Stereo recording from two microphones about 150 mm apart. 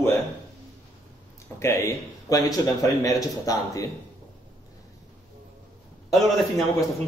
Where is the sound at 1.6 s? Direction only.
20° left (ahead or behind).